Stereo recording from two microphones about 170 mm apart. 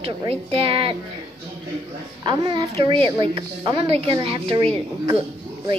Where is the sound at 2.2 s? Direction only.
25° right (ahead or behind).